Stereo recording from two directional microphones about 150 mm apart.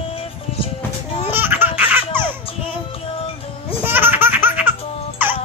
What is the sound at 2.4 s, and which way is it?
Music, 40° left (ahead or behind).